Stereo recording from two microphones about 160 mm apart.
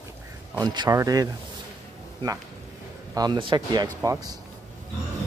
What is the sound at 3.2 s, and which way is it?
Speech, 30° right (ahead or behind).